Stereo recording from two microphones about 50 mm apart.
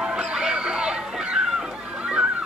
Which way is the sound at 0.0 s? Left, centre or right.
Centre.